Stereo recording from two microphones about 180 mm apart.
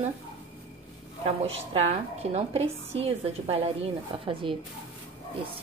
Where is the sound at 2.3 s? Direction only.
35° right (ahead or behind).